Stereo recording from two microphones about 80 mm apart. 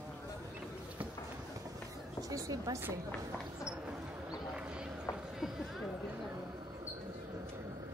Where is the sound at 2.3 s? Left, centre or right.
Right.